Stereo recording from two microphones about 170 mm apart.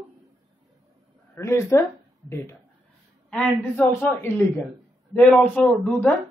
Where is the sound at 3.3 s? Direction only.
10° left (ahead or behind).